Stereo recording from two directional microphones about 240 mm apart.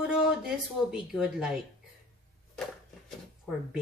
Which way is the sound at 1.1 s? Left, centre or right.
Centre.